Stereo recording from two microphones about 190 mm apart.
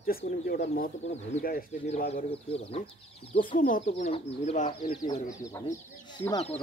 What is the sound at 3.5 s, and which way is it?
Speech, 45° left (ahead or behind).